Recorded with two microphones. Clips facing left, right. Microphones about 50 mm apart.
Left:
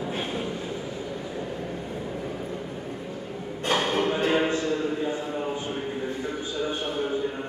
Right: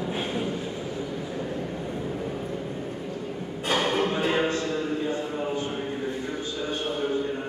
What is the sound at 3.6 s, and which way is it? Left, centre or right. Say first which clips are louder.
Music: even; centre.